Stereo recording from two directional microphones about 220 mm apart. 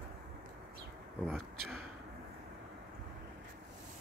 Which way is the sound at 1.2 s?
Centre (ahead or behind).